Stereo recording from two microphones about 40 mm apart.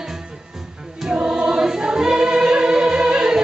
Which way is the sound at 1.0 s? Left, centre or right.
Right.